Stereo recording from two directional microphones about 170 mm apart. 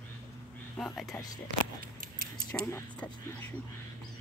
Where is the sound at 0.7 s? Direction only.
Centre (ahead or behind).